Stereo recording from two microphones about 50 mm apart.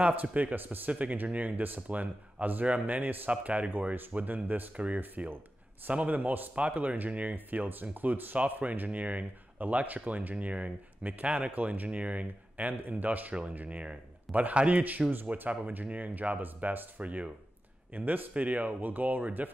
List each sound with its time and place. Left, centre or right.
0.0 s speech: right
11.5 s a man's voice: right